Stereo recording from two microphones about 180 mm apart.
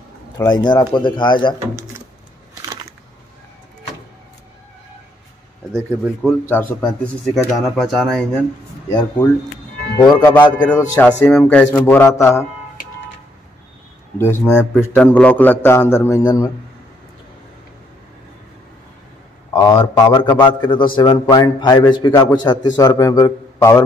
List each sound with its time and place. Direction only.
0.4 s a man's voice: 25° left (ahead or behind)
5.7 s speech: centre (ahead or behind)
9.9 s a man's voice: 20° left (ahead or behind)
10.6 s a man's voice: 10° left (ahead or behind)
14.1 s a man's voice: 10° left (ahead or behind)
19.5 s a man's voice: 25° left (ahead or behind)